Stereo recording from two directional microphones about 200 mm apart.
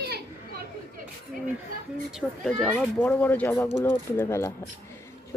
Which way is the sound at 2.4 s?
5° left (ahead or behind).